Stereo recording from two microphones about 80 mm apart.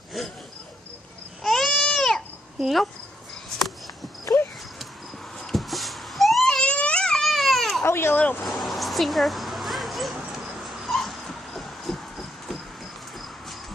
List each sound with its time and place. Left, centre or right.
1.4 s baby cry: centre
2.6 s speech: centre
4.2 s dog: left
5.4 s a sound: centre
6.6 s baby cry: centre
7.8 s a sound: left
8.5 s dog: centre